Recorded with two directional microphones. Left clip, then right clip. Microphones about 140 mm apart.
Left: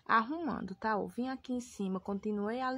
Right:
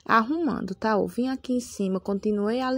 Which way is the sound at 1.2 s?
30° right (ahead or behind).